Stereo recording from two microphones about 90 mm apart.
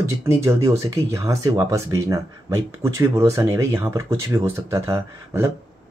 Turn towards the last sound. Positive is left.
turn(degrees=-30)  # may be behind; listen again after turning